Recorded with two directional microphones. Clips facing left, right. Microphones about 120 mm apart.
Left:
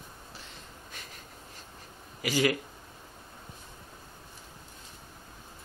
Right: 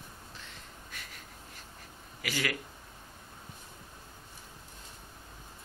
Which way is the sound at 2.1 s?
20° left (ahead or behind).